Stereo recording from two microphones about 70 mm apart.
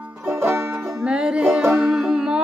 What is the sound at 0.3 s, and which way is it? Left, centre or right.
Music, right.